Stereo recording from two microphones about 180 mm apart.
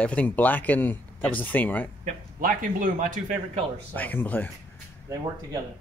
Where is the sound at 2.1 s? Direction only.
45° right (ahead or behind).